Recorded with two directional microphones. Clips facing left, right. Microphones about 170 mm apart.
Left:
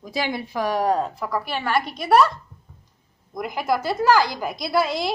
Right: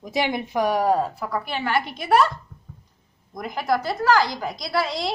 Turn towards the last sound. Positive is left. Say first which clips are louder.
# left 3 dB
turn(degrees=0)  # may be behind; listen again after turning